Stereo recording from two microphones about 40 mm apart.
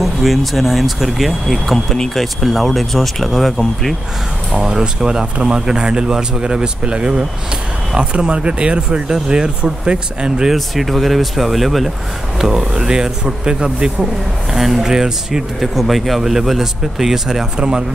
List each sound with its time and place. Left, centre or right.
0.0 s speech: centre
4.6 s speech: centre
10.5 s speech: centre
12.4 s speech: centre
14.5 s speech: centre